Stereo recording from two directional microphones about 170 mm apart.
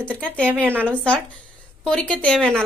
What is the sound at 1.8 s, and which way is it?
Speech, 5° left (ahead or behind).